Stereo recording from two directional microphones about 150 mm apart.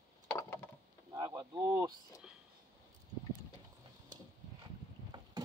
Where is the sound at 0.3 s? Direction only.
15° left (ahead or behind).